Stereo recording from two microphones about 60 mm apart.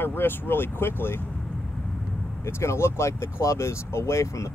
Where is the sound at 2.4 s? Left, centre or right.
Left.